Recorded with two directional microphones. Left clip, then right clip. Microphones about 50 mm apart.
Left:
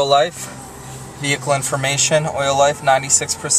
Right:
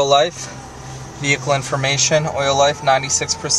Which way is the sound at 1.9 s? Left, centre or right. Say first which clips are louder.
Even; centre.